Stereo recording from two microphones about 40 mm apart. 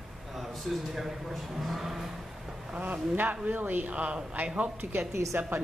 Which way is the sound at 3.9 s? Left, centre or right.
Right.